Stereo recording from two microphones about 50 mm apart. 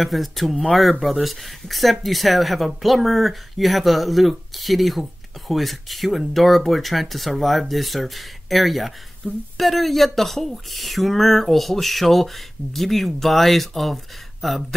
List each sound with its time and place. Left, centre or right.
0.0 s speech: centre